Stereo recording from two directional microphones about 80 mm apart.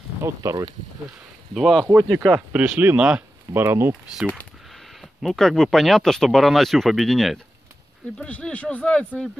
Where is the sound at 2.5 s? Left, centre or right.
Right.